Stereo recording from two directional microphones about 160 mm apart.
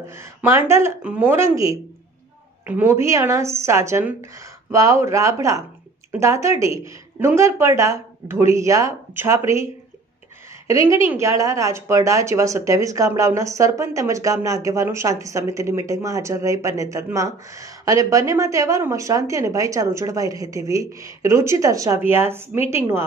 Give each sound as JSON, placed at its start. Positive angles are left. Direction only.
{"t": 0.1, "sound": "a woman's voice", "side_deg": -15}
{"t": 10.7, "sound": "a woman's voice", "side_deg": -20}